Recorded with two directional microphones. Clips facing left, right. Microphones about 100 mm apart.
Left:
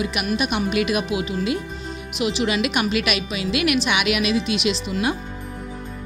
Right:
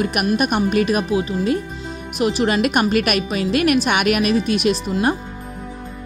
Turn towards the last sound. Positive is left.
turn(degrees=-50)  # may be behind; listen again after turning